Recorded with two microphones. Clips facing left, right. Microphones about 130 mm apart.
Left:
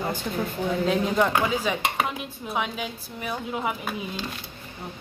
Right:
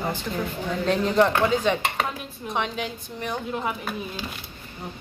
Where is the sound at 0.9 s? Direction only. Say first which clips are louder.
Right 4 dB; 5° left (ahead or behind).